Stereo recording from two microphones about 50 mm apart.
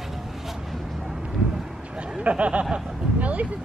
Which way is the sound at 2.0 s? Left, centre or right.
Right.